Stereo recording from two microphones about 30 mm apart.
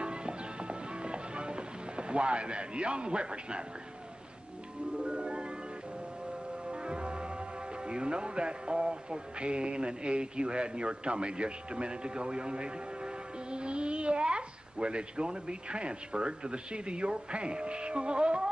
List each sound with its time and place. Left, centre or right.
0.0 s music: right
5.0 s music: right
6.7 s music: right